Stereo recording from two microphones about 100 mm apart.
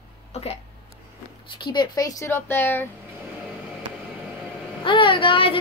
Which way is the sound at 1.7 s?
40° left (ahead or behind).